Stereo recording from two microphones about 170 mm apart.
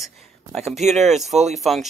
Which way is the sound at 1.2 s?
40° right (ahead or behind).